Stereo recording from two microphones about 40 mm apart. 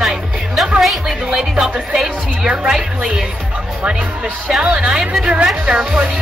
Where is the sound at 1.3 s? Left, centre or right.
Centre.